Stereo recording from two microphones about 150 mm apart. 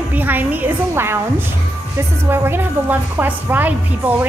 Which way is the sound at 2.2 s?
15° right (ahead or behind).